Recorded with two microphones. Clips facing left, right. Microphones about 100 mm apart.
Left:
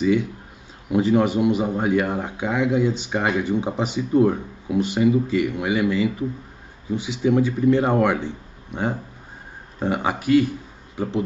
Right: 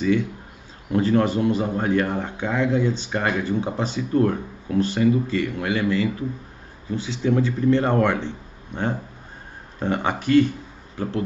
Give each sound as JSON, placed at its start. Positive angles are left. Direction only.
{"t": 0.0, "sound": "speech", "side_deg": 15}
{"t": 9.8, "sound": "speech", "side_deg": 10}